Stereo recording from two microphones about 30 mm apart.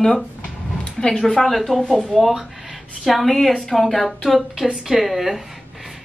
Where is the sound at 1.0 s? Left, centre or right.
Left.